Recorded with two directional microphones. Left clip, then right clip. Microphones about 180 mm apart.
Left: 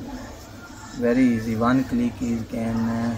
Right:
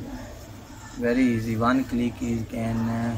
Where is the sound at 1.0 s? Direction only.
15° left (ahead or behind).